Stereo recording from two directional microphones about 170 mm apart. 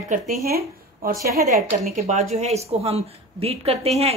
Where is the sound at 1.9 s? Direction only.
40° right (ahead or behind).